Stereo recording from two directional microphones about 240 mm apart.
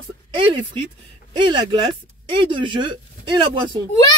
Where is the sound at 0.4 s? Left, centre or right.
Centre.